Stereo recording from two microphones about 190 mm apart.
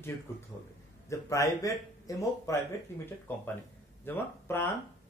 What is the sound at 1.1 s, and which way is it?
Speech, 15° left (ahead or behind).